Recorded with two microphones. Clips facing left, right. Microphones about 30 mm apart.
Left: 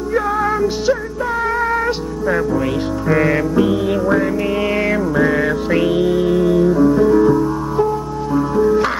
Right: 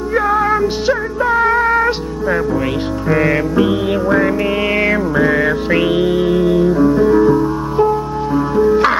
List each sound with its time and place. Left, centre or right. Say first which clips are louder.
0.1 s music: right 3 dB; right